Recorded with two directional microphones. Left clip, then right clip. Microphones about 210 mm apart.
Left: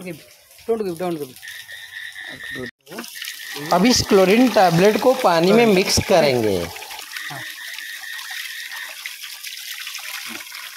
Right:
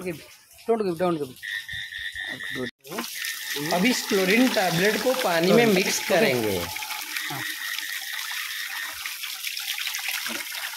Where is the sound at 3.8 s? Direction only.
30° left (ahead or behind).